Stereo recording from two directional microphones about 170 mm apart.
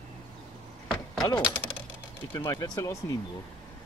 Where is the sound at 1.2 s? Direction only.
25° left (ahead or behind).